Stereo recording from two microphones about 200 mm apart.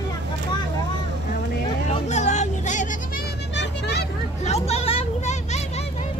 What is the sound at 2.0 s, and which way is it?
Music, 35° left (ahead or behind).